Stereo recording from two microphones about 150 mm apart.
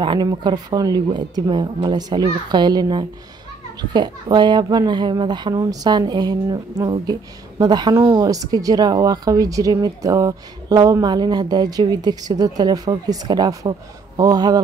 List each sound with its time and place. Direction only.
0.0 s speech: 30° right (ahead or behind)